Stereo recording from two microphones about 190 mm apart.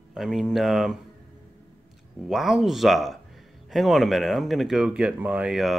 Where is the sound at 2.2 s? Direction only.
Centre (ahead or behind).